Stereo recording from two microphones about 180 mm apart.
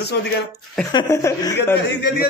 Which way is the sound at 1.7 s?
70° left (ahead or behind).